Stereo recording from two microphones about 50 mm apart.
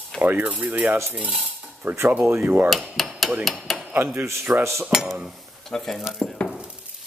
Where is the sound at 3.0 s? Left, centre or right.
Centre.